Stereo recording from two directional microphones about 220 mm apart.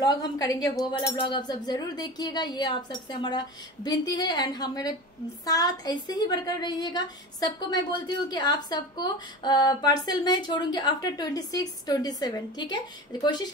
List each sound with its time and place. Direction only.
0.0 s a woman's voice: 15° left (ahead or behind)